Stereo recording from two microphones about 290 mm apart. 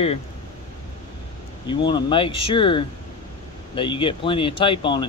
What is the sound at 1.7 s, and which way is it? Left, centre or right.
Speech, centre.